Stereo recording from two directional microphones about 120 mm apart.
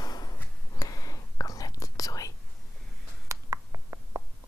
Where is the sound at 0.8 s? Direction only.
30° left (ahead or behind).